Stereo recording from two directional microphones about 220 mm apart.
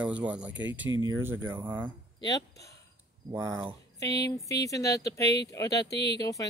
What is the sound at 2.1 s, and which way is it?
Speech, 15° left (ahead or behind).